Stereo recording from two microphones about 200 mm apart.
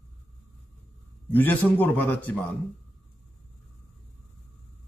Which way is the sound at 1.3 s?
10° left (ahead or behind).